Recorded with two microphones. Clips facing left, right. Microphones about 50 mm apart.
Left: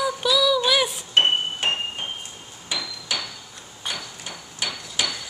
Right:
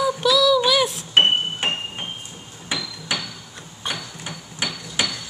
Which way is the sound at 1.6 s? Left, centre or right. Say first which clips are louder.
Left 2 dB; centre.